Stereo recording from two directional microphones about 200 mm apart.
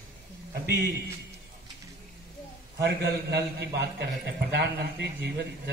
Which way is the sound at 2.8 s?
60° right (ahead or behind).